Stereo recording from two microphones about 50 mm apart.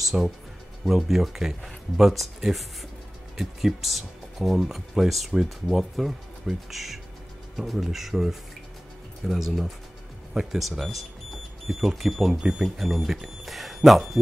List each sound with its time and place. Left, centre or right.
0.1 s speech: centre
0.8 s speech: centre